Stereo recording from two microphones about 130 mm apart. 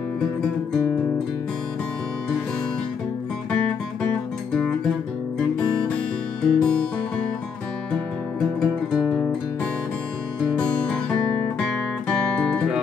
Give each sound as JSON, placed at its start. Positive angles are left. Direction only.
{"t": 6.4, "sound": "music", "side_deg": 5}
{"t": 11.6, "sound": "music", "side_deg": 5}